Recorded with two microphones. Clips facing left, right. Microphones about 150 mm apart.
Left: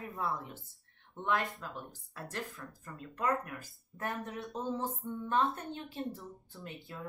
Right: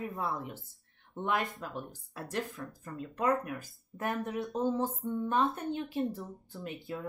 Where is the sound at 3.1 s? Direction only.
20° right (ahead or behind).